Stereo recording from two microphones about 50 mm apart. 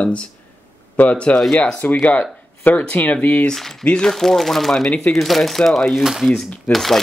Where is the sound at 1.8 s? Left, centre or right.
Left.